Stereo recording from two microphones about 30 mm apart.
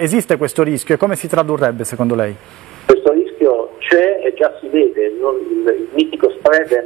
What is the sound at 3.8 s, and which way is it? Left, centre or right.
Radio, centre.